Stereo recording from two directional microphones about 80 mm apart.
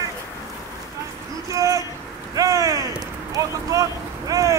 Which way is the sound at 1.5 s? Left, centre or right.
Right.